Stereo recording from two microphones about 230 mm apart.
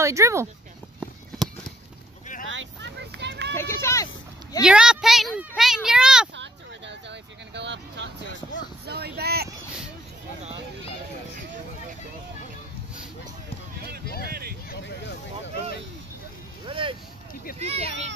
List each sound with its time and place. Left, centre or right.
0.0 s speech: centre
2.4 s a sound: right
3.5 s speech: centre
4.6 s speech: centre
6.3 s vehicle: right
8.8 s speech: right
14.0 s a sound: left
14.7 s vehicle: left
16.6 s vehicle: right
17.6 s speech: right